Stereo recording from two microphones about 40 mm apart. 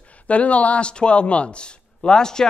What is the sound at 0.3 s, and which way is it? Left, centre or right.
Speech, left.